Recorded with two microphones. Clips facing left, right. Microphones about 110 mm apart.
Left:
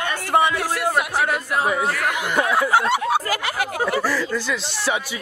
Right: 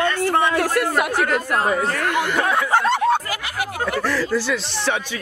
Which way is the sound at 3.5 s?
5° left (ahead or behind).